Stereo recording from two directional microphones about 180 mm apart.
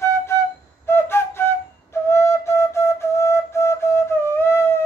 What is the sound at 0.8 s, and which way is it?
Flute, 15° left (ahead or behind).